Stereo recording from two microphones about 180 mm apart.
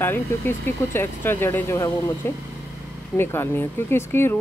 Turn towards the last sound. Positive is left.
turn(degrees=15)  # may be behind; listen again after turning